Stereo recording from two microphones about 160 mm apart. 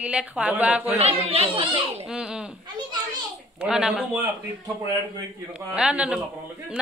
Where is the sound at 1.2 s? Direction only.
35° right (ahead or behind).